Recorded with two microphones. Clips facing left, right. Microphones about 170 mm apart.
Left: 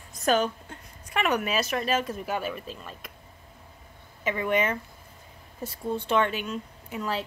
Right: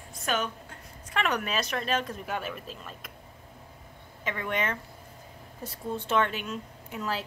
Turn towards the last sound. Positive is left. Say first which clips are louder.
# left 2 dB
turn(degrees=0)  # may be behind; listen again after turning